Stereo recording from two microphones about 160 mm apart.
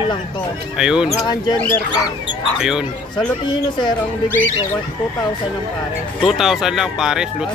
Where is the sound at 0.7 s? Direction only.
5° right (ahead or behind).